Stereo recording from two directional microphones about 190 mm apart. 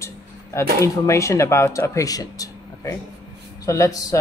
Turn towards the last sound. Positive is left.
turn(degrees=15)  # may be behind; listen again after turning